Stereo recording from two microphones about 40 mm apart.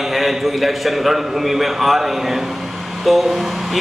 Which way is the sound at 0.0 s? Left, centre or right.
Centre.